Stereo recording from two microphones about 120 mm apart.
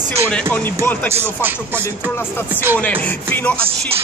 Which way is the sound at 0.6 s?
15° left (ahead or behind).